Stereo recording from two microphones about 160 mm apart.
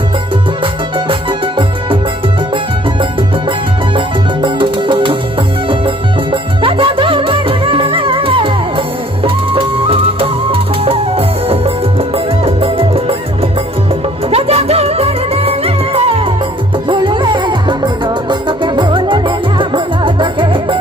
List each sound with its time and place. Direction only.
3.9 s music: 30° right (ahead or behind)
6.3 s music: 30° right (ahead or behind)
14.3 s music: 40° right (ahead or behind)